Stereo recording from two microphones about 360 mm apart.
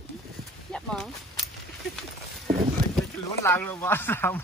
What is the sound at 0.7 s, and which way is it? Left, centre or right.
Speech, centre.